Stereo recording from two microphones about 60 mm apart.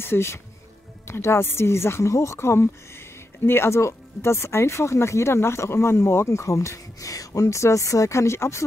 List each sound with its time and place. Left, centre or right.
0.0 s speech: left